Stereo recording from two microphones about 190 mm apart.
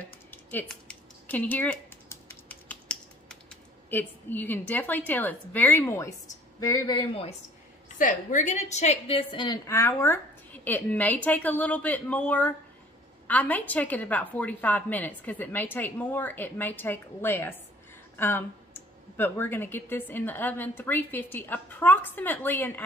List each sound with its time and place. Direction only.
0.3 s typing: 10° left (ahead or behind)
6.6 s speech: 15° left (ahead or behind)
8.0 s a woman's voice: 45° left (ahead or behind); by 22.7 s 10° left (ahead or behind)